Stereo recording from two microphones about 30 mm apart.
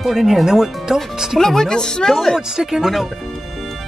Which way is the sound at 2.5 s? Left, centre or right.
Centre.